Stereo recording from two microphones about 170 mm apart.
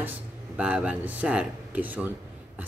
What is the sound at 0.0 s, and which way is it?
Speech, 10° right (ahead or behind).